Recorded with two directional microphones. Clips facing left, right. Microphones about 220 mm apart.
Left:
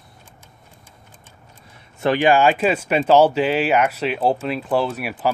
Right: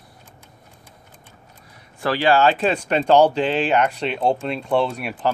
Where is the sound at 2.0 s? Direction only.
20° left (ahead or behind).